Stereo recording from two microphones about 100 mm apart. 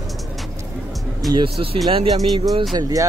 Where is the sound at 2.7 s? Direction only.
40° right (ahead or behind).